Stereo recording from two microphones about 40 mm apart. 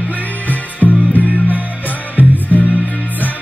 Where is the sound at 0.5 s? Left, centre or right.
Left.